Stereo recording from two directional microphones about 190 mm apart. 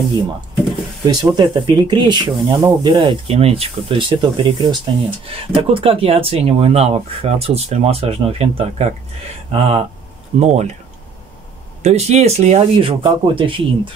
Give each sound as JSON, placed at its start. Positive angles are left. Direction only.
{"t": 1.0, "sound": "speech", "side_deg": -20}
{"t": 11.8, "sound": "speech", "side_deg": -35}